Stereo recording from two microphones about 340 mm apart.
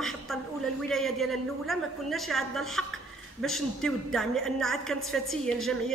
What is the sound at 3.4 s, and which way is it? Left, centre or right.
A man's voice, centre.